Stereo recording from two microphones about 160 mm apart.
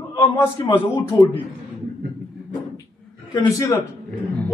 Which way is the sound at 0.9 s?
10° left (ahead or behind).